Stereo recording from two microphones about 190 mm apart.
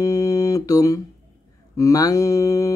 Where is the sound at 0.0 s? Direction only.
20° left (ahead or behind).